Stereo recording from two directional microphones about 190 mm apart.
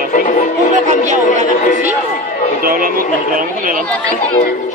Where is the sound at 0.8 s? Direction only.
40° right (ahead or behind).